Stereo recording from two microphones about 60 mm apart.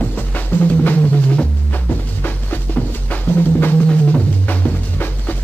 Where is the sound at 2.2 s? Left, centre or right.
Left.